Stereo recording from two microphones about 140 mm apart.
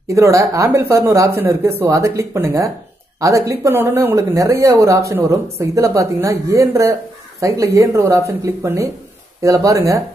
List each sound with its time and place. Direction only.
0.1 s speech: 20° right (ahead or behind)